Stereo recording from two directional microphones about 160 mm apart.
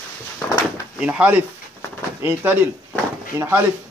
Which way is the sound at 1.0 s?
10° right (ahead or behind).